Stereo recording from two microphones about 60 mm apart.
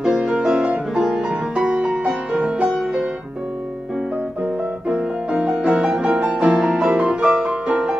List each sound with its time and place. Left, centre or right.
0.2 s music: centre
4.8 s music: centre